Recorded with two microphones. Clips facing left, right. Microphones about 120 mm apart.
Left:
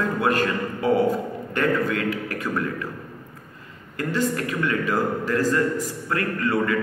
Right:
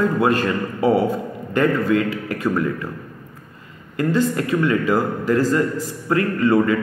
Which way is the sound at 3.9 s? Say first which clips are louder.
Right 5 dB; 25° right (ahead or behind).